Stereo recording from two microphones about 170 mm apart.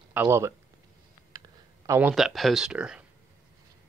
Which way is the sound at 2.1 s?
Centre (ahead or behind).